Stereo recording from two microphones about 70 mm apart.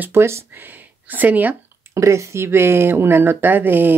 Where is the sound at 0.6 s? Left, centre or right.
Right.